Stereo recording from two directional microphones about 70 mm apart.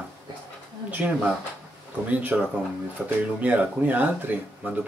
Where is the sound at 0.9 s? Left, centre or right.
Right.